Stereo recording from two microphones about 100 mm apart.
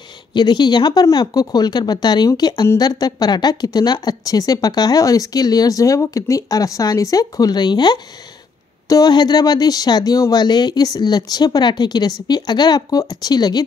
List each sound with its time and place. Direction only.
0.3 s a woman's voice: 50° left (ahead or behind)